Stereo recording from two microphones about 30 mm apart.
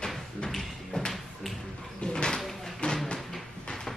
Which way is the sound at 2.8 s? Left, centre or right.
Left.